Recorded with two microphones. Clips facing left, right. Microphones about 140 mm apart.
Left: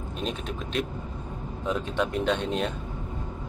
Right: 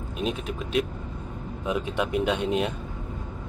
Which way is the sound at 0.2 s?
5° right (ahead or behind).